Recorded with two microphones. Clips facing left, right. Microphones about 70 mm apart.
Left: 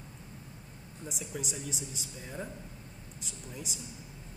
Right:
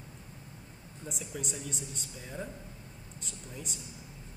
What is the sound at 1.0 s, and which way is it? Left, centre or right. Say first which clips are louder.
Speech: even; centre.